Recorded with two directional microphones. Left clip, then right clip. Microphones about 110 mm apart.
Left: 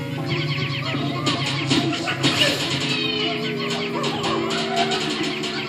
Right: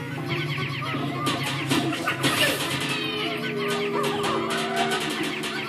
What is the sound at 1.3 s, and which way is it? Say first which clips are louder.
Music: left 4 dB; 30° left (ahead or behind).